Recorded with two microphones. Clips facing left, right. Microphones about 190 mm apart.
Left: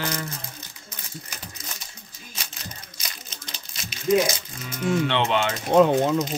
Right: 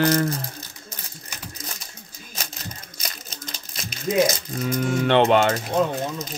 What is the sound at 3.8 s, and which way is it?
Speech, 40° right (ahead or behind).